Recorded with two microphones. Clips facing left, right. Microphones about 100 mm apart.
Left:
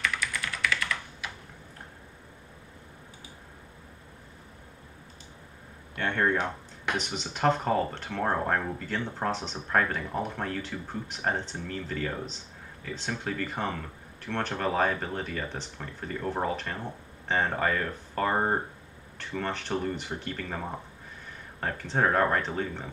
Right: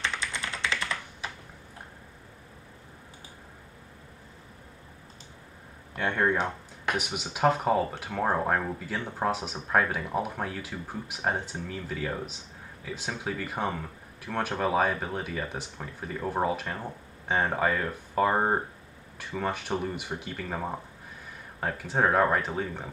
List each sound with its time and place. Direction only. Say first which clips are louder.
0.0 s typing: left 1 dB; 30° right (ahead or behind)
5.9 s speech: right 1 dB; 10° right (ahead or behind)